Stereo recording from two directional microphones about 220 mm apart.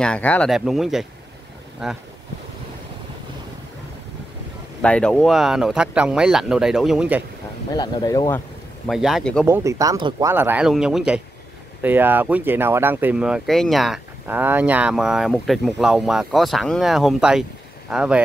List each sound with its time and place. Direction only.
0.0 s speech: 5° left (ahead or behind)
4.8 s speech: 5° left (ahead or behind)
7.7 s speech: 20° left (ahead or behind)
8.8 s speech: centre (ahead or behind)
9.5 s speech: 15° right (ahead or behind)
10.3 s speech: 10° right (ahead or behind)